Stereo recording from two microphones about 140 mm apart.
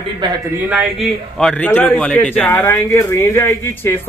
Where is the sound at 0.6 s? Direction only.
10° right (ahead or behind).